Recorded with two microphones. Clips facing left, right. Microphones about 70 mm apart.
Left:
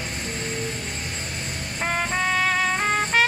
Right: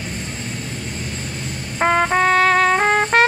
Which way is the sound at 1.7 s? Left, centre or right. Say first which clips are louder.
Right 9 dB; right.